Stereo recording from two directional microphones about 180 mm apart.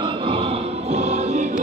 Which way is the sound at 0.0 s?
30° right (ahead or behind).